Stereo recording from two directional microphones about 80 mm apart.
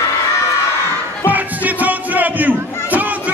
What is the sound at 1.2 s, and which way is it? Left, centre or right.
Crowd, right.